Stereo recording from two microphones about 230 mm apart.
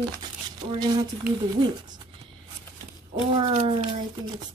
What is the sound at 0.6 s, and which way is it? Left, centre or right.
Speech, centre.